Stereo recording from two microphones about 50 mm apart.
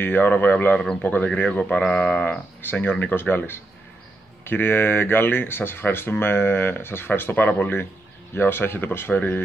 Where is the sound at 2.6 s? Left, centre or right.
Left.